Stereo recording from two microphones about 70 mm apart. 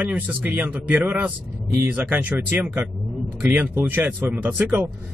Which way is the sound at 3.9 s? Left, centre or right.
Right.